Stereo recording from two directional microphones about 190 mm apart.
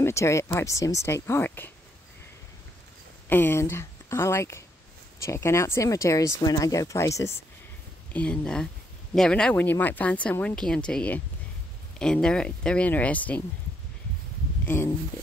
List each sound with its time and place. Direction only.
0.0 s speech: 15° left (ahead or behind)
3.3 s speech: 10° left (ahead or behind)
14.7 s speech: 15° left (ahead or behind)